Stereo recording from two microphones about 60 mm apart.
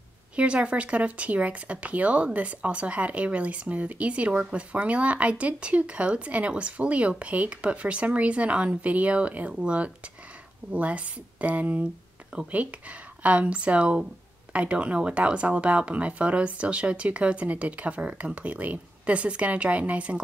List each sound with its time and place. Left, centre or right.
0.4 s speech: centre